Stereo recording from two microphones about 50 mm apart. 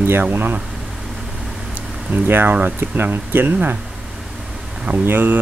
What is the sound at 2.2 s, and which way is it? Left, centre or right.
Speech, right.